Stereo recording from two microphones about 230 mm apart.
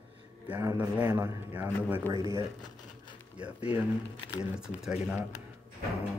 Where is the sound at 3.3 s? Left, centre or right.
Centre.